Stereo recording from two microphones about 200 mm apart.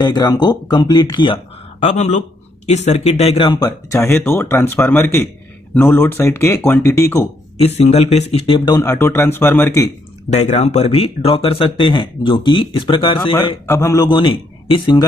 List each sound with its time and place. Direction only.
0.0 s speech: 20° left (ahead or behind)
7.6 s speech: 30° left (ahead or behind); by 9.7 s 10° left (ahead or behind)
10.4 s speech: 35° left (ahead or behind)
13.7 s speech: 15° left (ahead or behind)